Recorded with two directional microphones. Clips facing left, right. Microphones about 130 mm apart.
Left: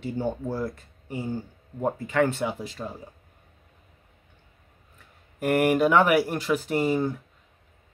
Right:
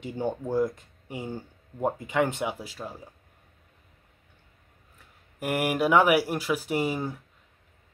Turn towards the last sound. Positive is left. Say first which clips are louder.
# left 4 dB
turn(degrees=-10)  # may be behind; listen again after turning